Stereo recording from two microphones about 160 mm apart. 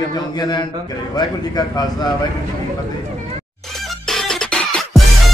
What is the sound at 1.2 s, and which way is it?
Speech, 25° left (ahead or behind).